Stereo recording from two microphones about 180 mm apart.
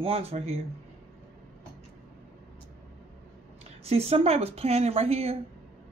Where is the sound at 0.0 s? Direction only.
35° right (ahead or behind).